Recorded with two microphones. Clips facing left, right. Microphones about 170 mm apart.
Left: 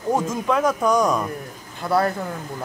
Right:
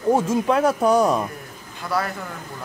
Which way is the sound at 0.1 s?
10° right (ahead or behind).